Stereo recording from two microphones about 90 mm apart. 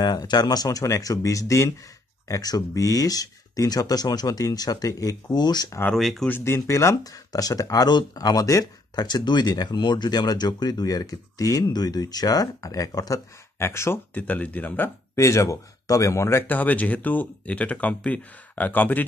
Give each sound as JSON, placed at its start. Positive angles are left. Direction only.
{"t": 0.0, "sound": "speech", "side_deg": 50}
{"t": 5.9, "sound": "speech", "side_deg": 0}
{"t": 6.2, "sound": "speech", "side_deg": 25}
{"t": 9.0, "sound": "speech", "side_deg": 55}
{"t": 13.6, "sound": "speech", "side_deg": 30}
{"t": 14.1, "sound": "speech", "side_deg": 15}
{"t": 15.1, "sound": "speech", "side_deg": 30}